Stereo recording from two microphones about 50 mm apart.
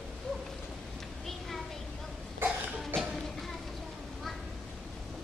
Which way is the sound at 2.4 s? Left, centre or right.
Right.